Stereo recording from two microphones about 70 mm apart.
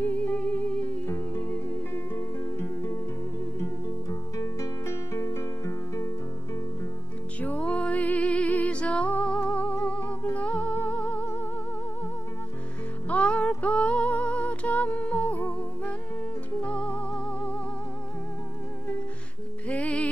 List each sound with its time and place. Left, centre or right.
0.0 s music: left
2.1 s music: left
7.3 s music: left
13.1 s music: centre
19.7 s music: centre